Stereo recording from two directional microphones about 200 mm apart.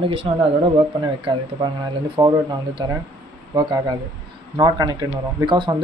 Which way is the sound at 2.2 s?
20° right (ahead or behind).